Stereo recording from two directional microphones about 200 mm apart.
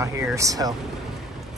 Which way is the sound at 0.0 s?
15° right (ahead or behind).